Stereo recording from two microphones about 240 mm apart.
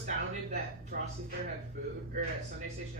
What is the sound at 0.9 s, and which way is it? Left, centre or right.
Speech, right.